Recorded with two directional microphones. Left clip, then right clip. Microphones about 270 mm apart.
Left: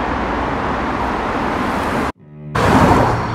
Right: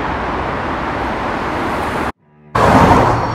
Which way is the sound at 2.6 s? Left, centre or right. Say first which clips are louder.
Right 3 dB; right.